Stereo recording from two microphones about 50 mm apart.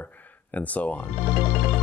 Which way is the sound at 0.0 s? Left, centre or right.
Left.